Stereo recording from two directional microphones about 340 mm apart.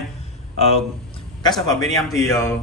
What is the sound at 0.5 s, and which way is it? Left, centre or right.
A man's voice, centre.